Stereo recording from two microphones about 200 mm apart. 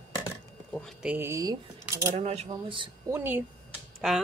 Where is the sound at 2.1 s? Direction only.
30° right (ahead or behind).